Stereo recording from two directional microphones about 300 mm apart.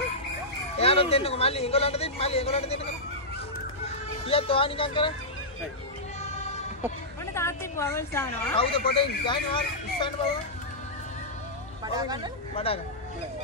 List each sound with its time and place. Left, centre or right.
0.7 s speech: centre
4.3 s a woman's voice: centre
7.3 s a woman's voice: centre
11.8 s speech: centre
12.6 s speech: centre